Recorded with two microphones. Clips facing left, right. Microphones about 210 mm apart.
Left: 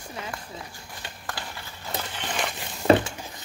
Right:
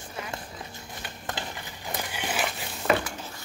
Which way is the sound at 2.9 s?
30° left (ahead or behind).